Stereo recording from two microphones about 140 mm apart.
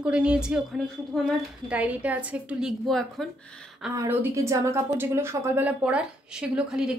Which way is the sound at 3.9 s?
20° right (ahead or behind).